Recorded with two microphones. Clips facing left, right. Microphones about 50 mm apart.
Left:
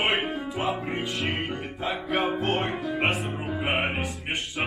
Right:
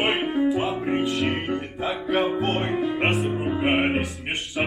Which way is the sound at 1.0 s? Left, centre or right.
Centre.